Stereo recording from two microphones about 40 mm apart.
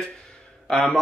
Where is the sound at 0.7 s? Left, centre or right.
Centre.